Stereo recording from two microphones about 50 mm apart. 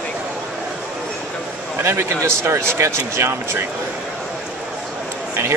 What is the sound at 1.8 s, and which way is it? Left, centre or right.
Speech, right.